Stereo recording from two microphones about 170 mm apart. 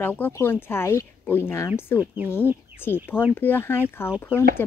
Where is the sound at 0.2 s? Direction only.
15° left (ahead or behind).